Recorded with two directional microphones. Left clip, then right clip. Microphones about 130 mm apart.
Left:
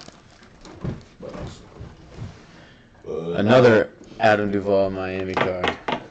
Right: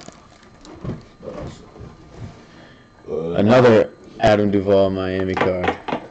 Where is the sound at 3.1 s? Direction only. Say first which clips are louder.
Right 3 dB; 30° right (ahead or behind).